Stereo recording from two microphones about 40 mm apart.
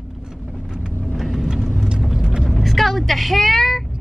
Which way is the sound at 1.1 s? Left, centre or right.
Centre.